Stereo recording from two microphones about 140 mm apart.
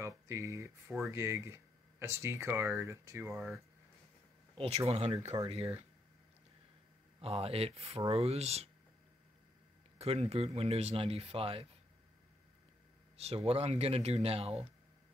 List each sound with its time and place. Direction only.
0.0 s speech: 20° right (ahead or behind)
4.6 s speech: 45° right (ahead or behind)
7.2 s speech: 45° right (ahead or behind)
9.9 s speech: 45° right (ahead or behind)
13.2 s speech: 45° right (ahead or behind)